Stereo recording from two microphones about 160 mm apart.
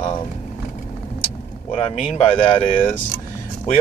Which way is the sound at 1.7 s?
35° left (ahead or behind).